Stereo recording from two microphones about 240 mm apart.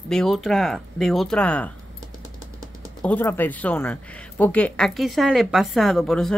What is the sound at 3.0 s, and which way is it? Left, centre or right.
Speech, centre.